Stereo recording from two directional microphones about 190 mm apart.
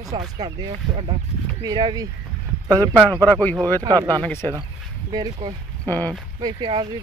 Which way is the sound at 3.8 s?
20° right (ahead or behind).